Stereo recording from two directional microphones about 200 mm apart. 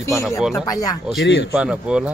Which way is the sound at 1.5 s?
5° right (ahead or behind).